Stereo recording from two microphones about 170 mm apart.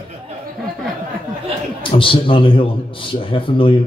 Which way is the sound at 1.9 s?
30° left (ahead or behind).